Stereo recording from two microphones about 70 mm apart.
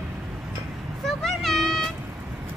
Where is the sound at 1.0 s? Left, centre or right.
Centre.